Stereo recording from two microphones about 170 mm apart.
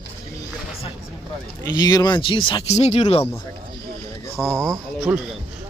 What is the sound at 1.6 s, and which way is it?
Speech, 25° left (ahead or behind).